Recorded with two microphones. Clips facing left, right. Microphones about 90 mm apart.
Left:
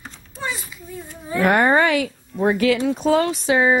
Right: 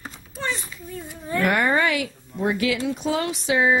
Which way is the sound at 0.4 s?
5° left (ahead or behind).